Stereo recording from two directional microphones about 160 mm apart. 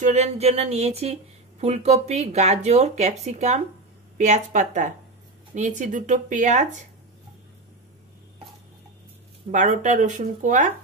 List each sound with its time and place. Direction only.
0.0 s speech: 45° right (ahead or behind)
9.5 s speech: 50° right (ahead or behind)